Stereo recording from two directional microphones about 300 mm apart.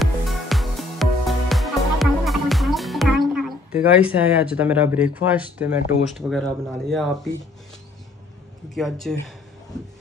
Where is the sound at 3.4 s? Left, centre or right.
Centre.